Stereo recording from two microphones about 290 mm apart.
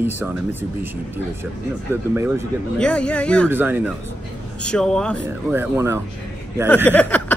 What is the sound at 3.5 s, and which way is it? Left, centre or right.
Speech, centre.